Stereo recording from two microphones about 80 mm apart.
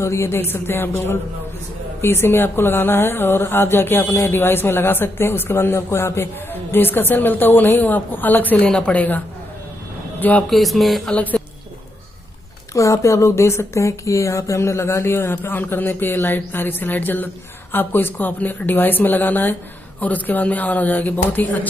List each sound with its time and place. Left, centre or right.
0.0 s a woman's voice: left; by 9.2 s centre
10.5 s speech: centre
11.1 s a woman's voice: centre
12.7 s speech: left